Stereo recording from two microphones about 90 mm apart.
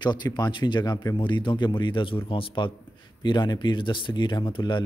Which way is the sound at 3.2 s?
55° left (ahead or behind).